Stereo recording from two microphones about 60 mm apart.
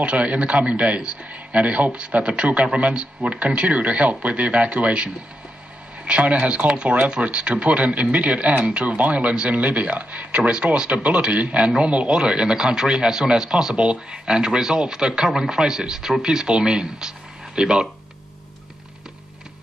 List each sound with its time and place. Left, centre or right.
0.0 s a man's voice: centre